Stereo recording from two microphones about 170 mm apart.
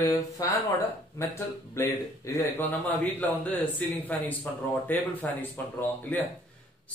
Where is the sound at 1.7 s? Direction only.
15° left (ahead or behind).